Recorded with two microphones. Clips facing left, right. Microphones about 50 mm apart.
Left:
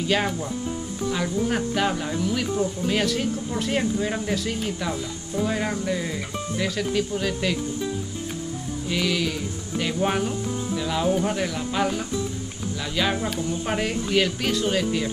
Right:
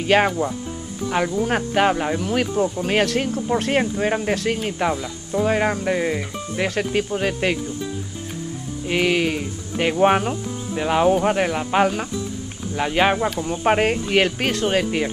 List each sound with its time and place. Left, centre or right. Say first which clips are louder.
0.0 s speech: right 6 dB; right
8.9 s speech: right 6 dB; right